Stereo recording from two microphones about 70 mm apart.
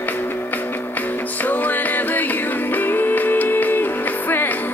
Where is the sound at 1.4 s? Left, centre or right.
Left.